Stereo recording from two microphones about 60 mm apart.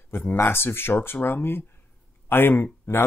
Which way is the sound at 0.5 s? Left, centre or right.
Left.